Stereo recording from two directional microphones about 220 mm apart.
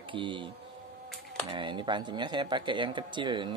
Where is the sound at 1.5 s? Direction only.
20° right (ahead or behind).